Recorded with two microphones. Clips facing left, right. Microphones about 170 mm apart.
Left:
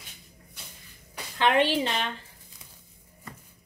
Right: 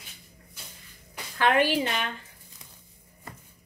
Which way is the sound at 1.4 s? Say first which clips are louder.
Even; 25° left (ahead or behind).